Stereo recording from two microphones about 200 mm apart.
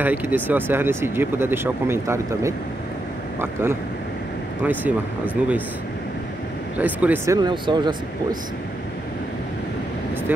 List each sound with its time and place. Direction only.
0.0 s speech: 10° right (ahead or behind)
4.6 s speech: 10° right (ahead or behind)
6.8 s speech: 10° right (ahead or behind)
7.3 s speech: 20° right (ahead or behind)